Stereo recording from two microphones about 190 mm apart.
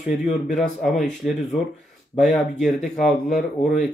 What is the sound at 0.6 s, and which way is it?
Speech, centre (ahead or behind).